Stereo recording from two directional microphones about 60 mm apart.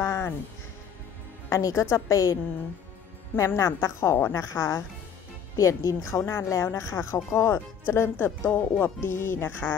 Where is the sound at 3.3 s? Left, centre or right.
Left.